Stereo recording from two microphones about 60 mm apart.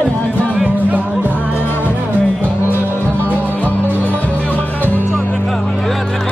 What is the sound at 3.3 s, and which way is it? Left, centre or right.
Music, right.